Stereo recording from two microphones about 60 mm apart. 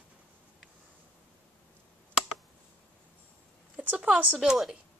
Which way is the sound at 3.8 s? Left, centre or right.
Right.